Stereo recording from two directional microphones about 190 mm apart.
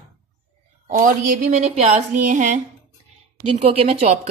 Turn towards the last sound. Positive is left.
turn(degrees=-35)  # may be behind; listen again after turning